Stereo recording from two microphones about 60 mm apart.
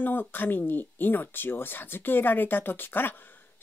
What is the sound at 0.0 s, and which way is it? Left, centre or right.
Speech, left.